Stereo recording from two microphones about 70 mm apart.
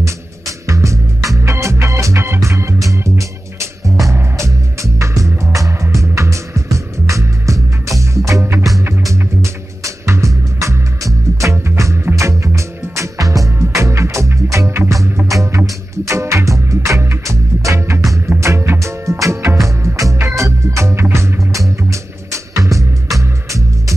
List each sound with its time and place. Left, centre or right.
0.0 s music: right